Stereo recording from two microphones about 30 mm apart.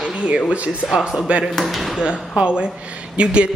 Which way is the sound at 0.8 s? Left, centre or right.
Centre.